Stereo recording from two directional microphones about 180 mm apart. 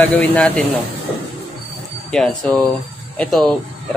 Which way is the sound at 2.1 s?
5° left (ahead or behind).